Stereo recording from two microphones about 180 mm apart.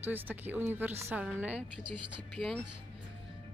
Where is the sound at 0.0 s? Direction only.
10° right (ahead or behind).